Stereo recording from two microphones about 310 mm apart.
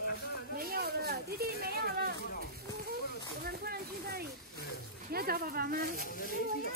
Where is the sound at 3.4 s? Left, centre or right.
Right.